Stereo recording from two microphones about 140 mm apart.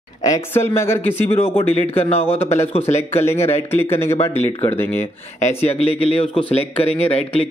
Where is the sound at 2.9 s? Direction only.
15° left (ahead or behind).